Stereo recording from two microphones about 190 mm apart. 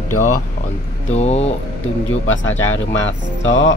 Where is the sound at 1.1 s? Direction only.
35° left (ahead or behind).